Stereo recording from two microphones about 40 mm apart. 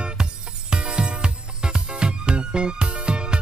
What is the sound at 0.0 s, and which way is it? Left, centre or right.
Music, right.